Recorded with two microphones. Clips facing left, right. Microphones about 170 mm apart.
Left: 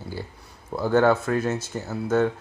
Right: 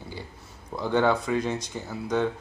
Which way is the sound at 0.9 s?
45° left (ahead or behind).